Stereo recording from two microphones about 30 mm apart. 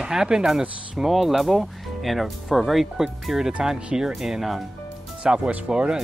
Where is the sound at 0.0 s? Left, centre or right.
Right.